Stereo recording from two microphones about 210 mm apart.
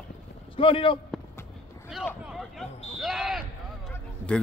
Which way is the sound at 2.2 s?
Centre (ahead or behind).